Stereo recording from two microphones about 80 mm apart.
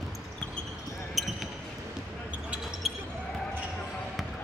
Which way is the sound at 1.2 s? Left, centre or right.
Centre.